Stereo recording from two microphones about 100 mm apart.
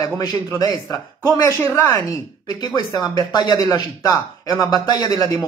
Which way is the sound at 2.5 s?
45° left (ahead or behind).